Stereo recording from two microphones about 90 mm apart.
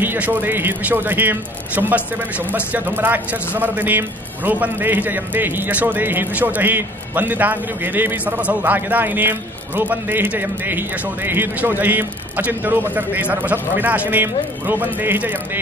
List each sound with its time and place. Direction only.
0.0 s a man's voice: 20° right (ahead or behind)